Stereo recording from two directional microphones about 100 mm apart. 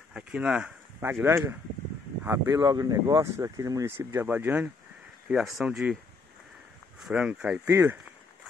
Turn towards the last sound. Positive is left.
turn(degrees=-30)  # may be behind; listen again after turning